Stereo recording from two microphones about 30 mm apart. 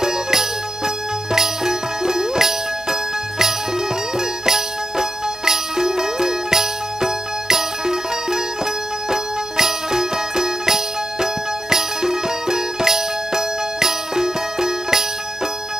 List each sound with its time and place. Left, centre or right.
0.0 s music: centre